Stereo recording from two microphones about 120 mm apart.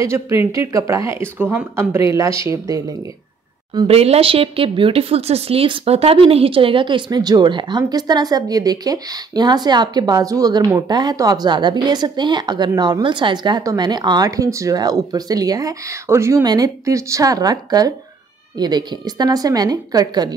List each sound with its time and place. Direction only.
0.0 s speech: 25° right (ahead or behind)
3.8 s a woman's voice: 60° right (ahead or behind); by 20.3 s 35° right (ahead or behind)